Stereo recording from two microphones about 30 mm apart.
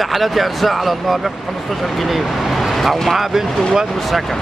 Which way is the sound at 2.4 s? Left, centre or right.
Centre.